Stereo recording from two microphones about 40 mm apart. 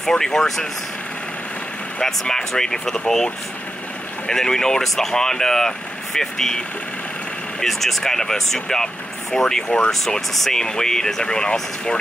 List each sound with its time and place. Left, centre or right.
0.0 s speech: centre
2.0 s speech: centre
4.3 s speech: centre
7.6 s speech: centre